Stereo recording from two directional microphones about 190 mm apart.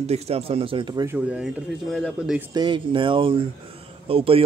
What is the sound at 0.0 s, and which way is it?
Speech, 30° right (ahead or behind).